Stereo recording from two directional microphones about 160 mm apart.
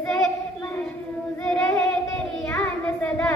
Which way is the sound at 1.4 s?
5° left (ahead or behind).